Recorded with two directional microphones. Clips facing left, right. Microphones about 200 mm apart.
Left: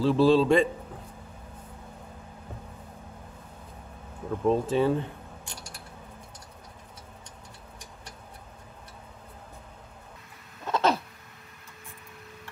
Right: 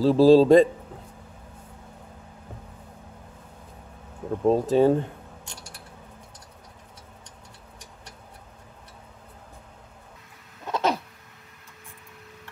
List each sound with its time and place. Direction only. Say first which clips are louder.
0.0 s speech: right 5 dB; 35° right (ahead or behind)
4.3 s speech: right 3 dB; 40° right (ahead or behind)
10.6 s a sound: even; 15° right (ahead or behind)